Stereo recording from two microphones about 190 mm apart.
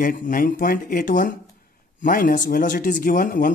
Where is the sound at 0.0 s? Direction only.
45° left (ahead or behind).